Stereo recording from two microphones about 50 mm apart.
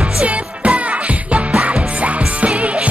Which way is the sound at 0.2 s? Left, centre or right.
Right.